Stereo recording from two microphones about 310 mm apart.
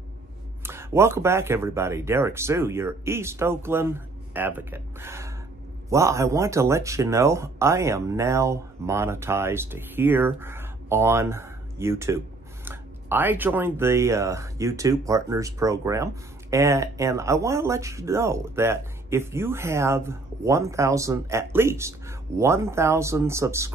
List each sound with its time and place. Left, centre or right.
0.7 s speech: centre